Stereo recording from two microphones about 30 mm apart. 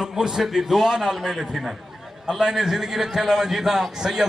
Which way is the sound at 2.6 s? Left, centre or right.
Centre.